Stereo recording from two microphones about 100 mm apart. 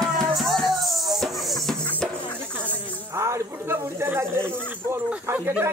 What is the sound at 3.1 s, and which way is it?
Snake, 30° right (ahead or behind).